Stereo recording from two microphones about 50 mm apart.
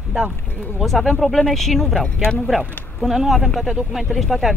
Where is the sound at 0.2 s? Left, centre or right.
Centre.